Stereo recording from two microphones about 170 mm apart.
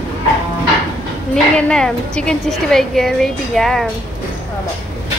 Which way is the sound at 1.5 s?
5° left (ahead or behind).